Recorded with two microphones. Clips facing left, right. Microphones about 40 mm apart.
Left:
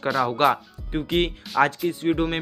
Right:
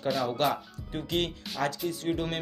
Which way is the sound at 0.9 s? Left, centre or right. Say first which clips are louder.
Left 7 dB; left.